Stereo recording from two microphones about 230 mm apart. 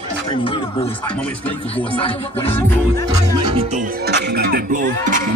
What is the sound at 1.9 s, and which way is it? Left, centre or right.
Music, left.